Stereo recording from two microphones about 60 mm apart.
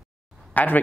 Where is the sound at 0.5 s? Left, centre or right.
Left.